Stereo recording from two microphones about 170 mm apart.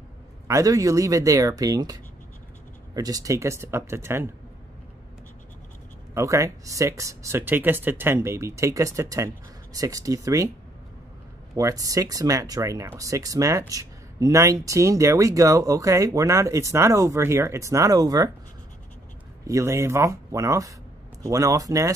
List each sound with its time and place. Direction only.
0.5 s speech: 20° right (ahead or behind)
6.1 s speech: 20° right (ahead or behind)
11.5 s speech: 20° right (ahead or behind)
19.4 s speech: 15° right (ahead or behind)